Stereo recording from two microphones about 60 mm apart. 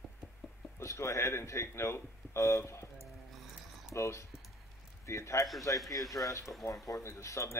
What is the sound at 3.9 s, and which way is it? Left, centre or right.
A man's voice, left.